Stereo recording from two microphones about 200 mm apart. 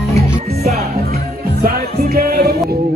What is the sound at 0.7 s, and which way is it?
Music, 50° right (ahead or behind).